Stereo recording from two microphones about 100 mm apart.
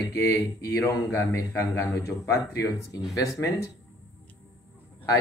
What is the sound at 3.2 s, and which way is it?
Speech, 30° left (ahead or behind).